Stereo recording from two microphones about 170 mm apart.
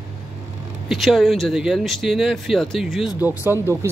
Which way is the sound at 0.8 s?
Centre (ahead or behind).